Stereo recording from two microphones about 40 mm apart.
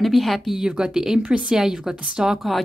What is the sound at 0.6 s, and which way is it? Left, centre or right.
A woman's voice, centre.